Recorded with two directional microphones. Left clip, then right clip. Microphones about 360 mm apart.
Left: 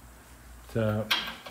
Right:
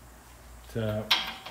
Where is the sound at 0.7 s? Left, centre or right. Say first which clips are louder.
Left 4 dB; centre.